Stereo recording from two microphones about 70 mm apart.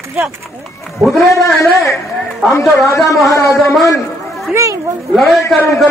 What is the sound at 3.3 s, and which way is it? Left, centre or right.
Speech, left.